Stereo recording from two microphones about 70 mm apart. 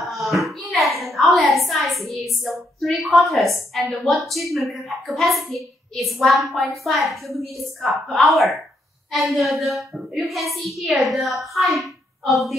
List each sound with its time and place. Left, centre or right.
0.0 s hands: centre
1.0 s a sound: centre
2.4 s a woman's voice: centre